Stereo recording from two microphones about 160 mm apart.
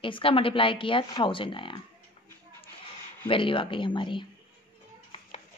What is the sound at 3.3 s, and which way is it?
A woman's voice, 35° left (ahead or behind).